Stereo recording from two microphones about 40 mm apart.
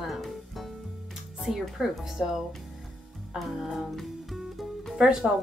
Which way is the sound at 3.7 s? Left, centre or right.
Centre.